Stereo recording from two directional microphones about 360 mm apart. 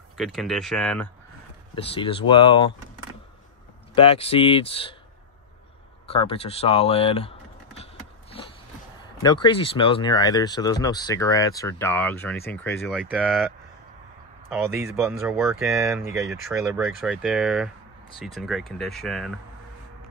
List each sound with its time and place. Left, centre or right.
0.2 s speech: centre
1.8 s speech: centre
3.9 s speech: centre
6.0 s speech: centre
8.3 s a sound: centre
9.2 s speech: centre
14.5 s speech: centre